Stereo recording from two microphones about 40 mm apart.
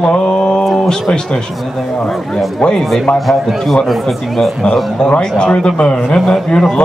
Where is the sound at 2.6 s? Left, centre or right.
Left.